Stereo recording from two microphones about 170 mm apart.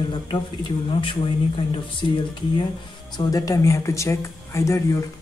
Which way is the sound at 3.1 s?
20° left (ahead or behind).